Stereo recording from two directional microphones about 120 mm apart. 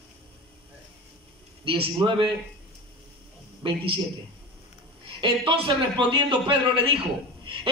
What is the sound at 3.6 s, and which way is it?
Speech, 45° right (ahead or behind).